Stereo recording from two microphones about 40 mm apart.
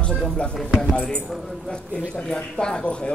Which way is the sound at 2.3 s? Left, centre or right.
Left.